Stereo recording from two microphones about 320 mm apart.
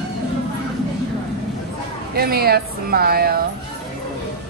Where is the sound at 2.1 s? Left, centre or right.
Right.